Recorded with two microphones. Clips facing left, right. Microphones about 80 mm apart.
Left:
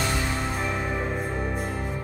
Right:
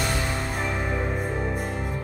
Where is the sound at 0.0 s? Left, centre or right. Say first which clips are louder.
Even; centre.